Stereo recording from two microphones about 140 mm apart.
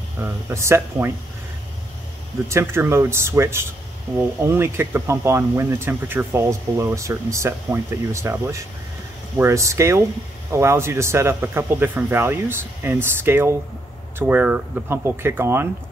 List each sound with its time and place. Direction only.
0.2 s speech: 20° right (ahead or behind)
2.4 s speech: 20° right (ahead or behind)